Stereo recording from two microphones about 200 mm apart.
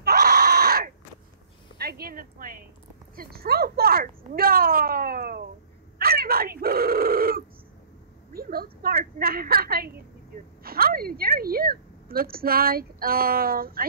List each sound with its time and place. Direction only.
0.0 s screaming: 50° right (ahead or behind)
1.8 s a sound: 50° right (ahead or behind)
3.2 s a woman's voice: 50° right (ahead or behind)